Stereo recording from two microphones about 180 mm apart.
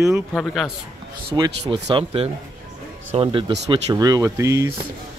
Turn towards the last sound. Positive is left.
turn(degrees=-15)  # may be behind; listen again after turning